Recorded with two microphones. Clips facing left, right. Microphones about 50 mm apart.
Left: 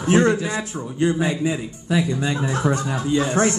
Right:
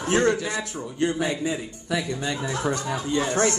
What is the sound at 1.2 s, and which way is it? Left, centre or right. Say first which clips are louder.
A man's voice: left 4 dB; left.